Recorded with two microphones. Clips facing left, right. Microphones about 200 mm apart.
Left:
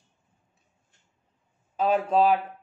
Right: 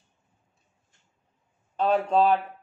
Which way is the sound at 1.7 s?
5° left (ahead or behind).